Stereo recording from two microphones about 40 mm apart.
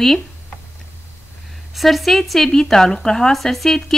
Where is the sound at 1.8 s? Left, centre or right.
Centre.